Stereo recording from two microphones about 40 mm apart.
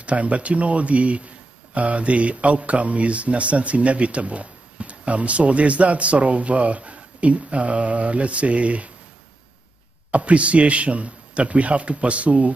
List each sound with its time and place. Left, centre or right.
0.0 s a man's voice: right
10.1 s a man's voice: right